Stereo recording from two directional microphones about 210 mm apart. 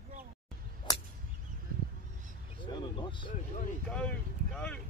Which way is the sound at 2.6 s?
20° left (ahead or behind).